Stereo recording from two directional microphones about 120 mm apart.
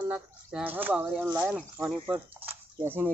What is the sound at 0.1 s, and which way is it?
Speech, 10° right (ahead or behind).